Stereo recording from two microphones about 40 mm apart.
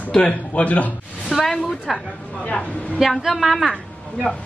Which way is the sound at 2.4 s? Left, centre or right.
Left.